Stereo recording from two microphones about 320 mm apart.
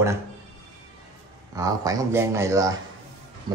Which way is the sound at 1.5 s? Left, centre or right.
Centre.